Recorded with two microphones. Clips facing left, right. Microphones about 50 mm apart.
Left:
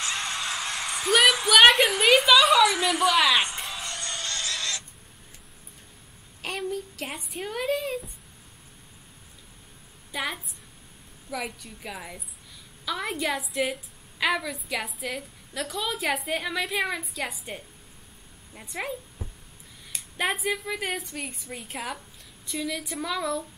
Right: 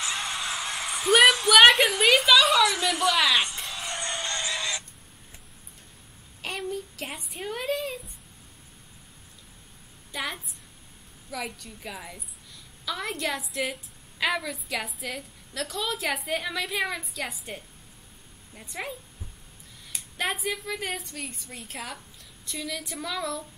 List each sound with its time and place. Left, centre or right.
0.0 s music: centre
1.3 s a woman's voice: centre
3.5 s a sound: centre
3.9 s oink: right
6.4 s a child's voice: centre
10.1 s a woman's voice: centre